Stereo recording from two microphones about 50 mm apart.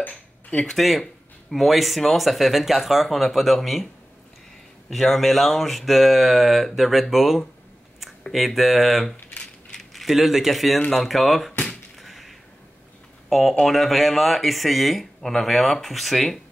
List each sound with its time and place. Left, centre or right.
0.0 s a sound: left
0.7 s speech: centre
9.4 s ratchet: centre
9.9 s speech: centre
12.0 s a sound: centre
13.3 s speech: centre